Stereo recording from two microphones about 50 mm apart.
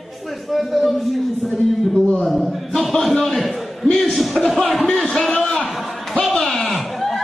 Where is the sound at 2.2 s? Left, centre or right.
Centre.